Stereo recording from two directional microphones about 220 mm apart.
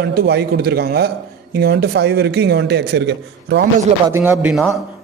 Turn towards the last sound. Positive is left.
turn(degrees=-5)  # may be behind; listen again after turning